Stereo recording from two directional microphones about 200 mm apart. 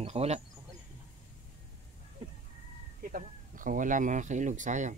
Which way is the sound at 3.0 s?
45° right (ahead or behind).